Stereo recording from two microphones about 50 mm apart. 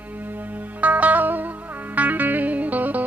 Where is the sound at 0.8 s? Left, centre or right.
Right.